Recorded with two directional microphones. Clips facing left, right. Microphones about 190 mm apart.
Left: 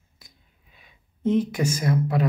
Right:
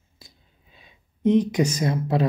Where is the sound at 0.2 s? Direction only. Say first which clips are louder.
Right 5 dB; 30° right (ahead or behind).